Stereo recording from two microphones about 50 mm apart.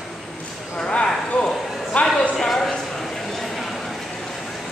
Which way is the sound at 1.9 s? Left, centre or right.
Left.